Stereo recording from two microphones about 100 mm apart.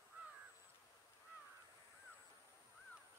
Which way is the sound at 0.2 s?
15° right (ahead or behind).